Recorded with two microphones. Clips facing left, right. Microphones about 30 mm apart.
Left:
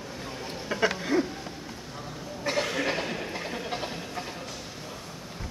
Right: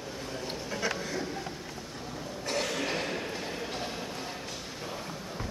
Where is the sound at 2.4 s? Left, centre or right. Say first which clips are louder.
Left 4 dB; left.